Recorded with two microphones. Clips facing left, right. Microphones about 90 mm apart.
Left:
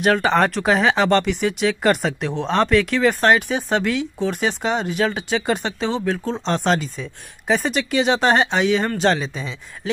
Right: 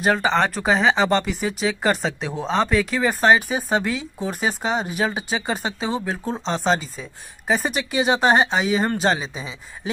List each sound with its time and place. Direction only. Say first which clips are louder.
0.0 s speech: left 2 dB; 5° right (ahead or behind)